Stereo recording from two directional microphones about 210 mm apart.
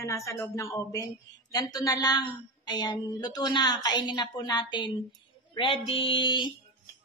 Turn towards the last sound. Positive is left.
turn(degrees=20)  # may be behind; listen again after turning